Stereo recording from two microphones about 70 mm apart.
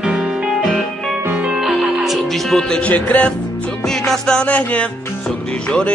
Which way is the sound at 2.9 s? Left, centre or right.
Left.